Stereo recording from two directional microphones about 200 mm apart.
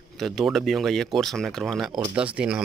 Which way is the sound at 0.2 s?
Centre (ahead or behind).